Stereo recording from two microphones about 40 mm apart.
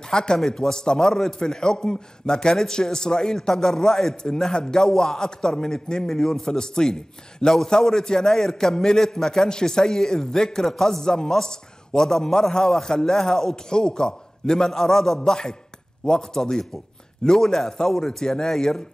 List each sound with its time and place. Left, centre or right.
0.1 s a man's voice: centre